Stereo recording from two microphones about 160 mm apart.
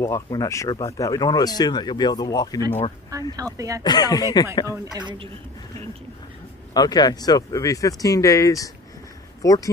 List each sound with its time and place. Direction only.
0.0 s speech: 20° left (ahead or behind)
3.3 s speech: 20° right (ahead or behind)
3.8 s speech: 25° left (ahead or behind)
4.9 s speech: 30° right (ahead or behind)
6.7 s speech: 25° left (ahead or behind)